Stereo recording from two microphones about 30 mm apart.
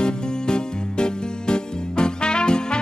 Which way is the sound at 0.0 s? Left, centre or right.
Left.